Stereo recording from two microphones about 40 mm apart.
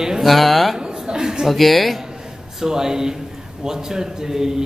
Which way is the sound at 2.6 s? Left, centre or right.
Centre.